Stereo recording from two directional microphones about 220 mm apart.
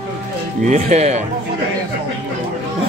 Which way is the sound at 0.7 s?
30° right (ahead or behind).